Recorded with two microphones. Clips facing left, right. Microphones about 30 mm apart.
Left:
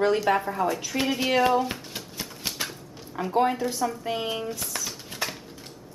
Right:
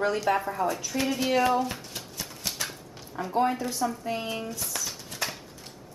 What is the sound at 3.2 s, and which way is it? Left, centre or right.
Speech, centre.